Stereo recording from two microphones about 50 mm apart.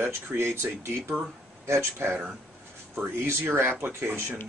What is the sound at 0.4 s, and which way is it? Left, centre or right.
Speech, right.